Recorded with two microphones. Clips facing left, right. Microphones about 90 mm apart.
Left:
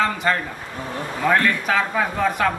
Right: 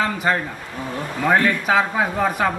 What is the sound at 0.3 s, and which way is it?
A man's voice, 15° right (ahead or behind).